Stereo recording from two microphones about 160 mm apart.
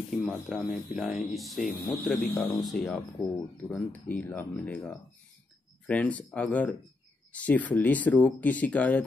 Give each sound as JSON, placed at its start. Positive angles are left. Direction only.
{"t": 0.1, "sound": "speech", "side_deg": -5}